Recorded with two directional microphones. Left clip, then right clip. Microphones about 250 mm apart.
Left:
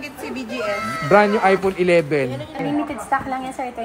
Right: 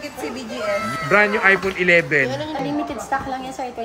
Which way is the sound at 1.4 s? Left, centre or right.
Centre.